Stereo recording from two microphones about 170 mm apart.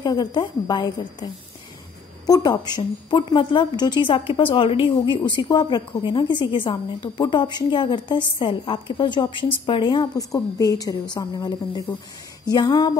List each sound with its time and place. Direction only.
0.0 s a woman's voice: 25° left (ahead or behind)